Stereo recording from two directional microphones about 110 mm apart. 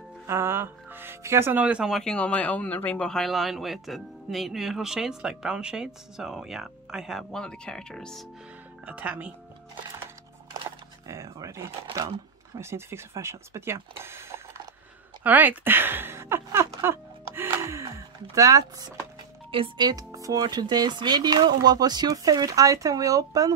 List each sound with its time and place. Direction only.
0.3 s speech: 20° right (ahead or behind)
1.9 s speech: 5° left (ahead or behind)
8.8 s speech: 10° right (ahead or behind)
11.1 s speech: 30° right (ahead or behind)